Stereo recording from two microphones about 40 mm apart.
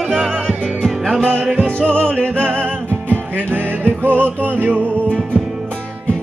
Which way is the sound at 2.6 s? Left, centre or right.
Right.